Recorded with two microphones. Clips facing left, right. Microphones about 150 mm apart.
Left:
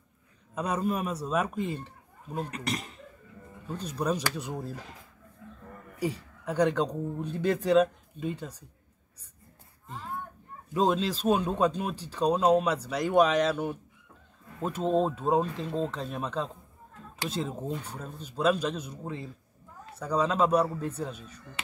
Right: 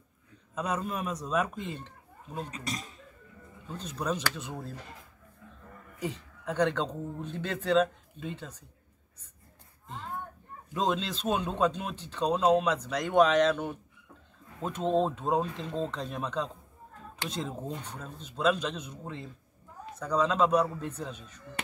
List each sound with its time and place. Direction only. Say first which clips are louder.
0.8 s speech: left 4 dB; 10° left (ahead or behind)
2.5 s speech: left 4 dB; 65° left (ahead or behind)
3.6 s speech: left 3 dB; 10° left (ahead or behind)
5.9 s speech: left 4 dB; 10° left (ahead or behind)
10.7 s speech: left 4 dB; 10° left (ahead or behind)